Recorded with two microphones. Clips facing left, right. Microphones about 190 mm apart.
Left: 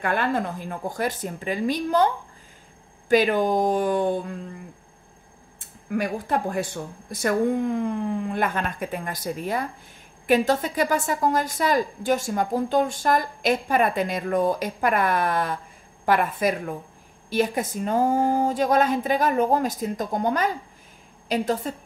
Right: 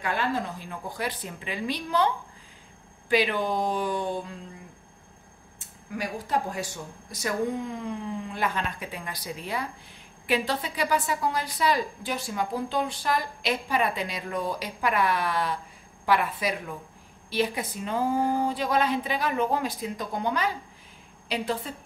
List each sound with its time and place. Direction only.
0.0 s a woman's voice: 55° left (ahead or behind)
3.1 s a woman's voice: 45° left (ahead or behind)
5.6 s a woman's voice: 55° left (ahead or behind)